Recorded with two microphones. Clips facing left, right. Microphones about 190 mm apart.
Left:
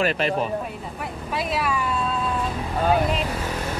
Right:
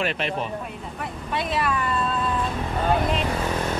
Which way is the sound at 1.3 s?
Centre (ahead or behind).